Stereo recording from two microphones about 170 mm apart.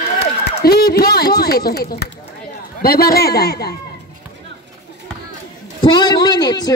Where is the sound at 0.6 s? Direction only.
65° left (ahead or behind).